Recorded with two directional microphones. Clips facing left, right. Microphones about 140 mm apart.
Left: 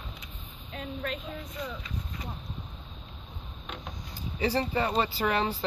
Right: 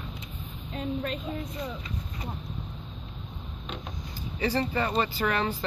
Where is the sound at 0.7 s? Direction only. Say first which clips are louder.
Right 4 dB; 25° right (ahead or behind).